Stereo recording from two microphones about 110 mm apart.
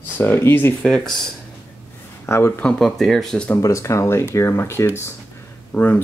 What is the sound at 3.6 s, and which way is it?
Speech, 30° left (ahead or behind).